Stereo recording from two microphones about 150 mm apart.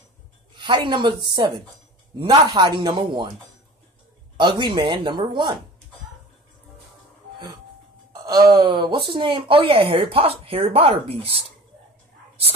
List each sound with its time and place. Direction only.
0.6 s speech: 30° right (ahead or behind)
4.4 s speech: 30° right (ahead or behind)
8.1 s speech: 25° right (ahead or behind)